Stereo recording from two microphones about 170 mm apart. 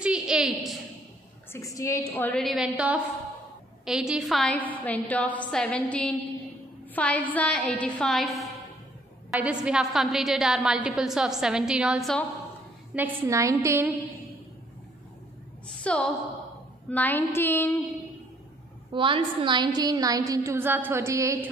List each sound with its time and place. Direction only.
0.0 s a sound: 5° right (ahead or behind)
1.5 s a woman's voice: 20° left (ahead or behind); by 12.3 s centre (ahead or behind)
12.9 s a woman's voice: 15° right (ahead or behind)
15.8 s a woman's voice: 5° left (ahead or behind)
18.9 s a woman's voice: 30° right (ahead or behind)